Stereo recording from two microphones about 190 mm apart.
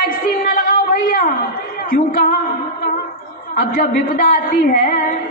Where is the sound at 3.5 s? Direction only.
45° left (ahead or behind).